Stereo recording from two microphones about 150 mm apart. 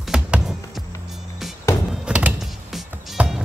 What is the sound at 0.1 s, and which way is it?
Music, 5° right (ahead or behind).